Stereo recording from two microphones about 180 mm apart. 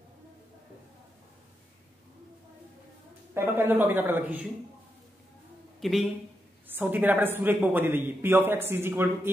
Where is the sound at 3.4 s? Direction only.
10° right (ahead or behind).